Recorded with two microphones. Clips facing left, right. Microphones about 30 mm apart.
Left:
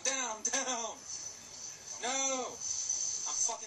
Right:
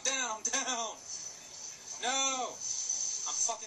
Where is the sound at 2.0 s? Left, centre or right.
Centre.